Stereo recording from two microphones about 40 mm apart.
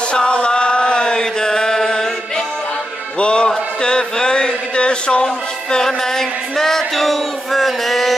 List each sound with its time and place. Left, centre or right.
0.1 s chant: left
3.2 s a man's voice: left; by 8.2 s centre